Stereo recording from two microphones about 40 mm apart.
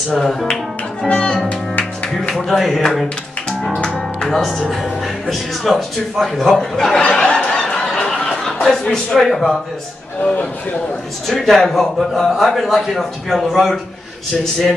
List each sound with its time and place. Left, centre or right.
0.1 s a man's voice: centre
1.0 s speech: left
2.5 s a man's voice: centre
4.2 s a man's voice: centre
7.0 s a sound: left
7.6 s fowl: centre
8.6 s a man's voice: centre
11.2 s a man's voice: centre